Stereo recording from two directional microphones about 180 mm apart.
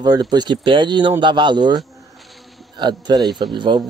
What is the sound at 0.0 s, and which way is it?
Speech, 20° right (ahead or behind).